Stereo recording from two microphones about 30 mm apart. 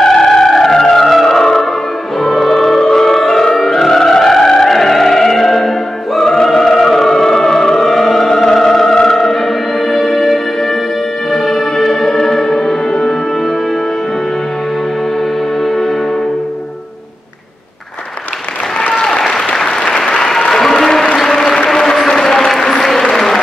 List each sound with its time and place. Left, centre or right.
0.0 s music: centre
3.5 s opera: centre
3.8 s music: centre
15.6 s music: centre
19.0 s applause: centre